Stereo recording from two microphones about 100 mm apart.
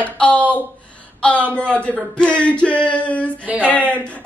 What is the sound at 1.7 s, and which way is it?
A woman's voice, 10° left (ahead or behind).